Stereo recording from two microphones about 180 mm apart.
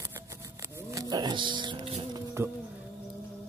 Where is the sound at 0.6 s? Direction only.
15° right (ahead or behind).